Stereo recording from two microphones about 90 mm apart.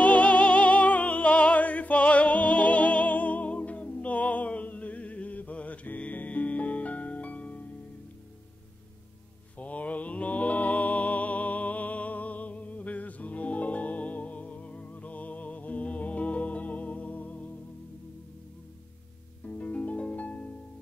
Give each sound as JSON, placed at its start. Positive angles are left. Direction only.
{"t": 0.0, "sound": "music", "side_deg": 15}
{"t": 9.6, "sound": "mantra", "side_deg": 15}
{"t": 19.4, "sound": "music", "side_deg": 15}